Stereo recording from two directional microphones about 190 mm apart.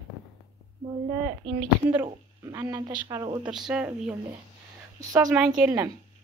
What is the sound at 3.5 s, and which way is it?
Speech, 5° right (ahead or behind).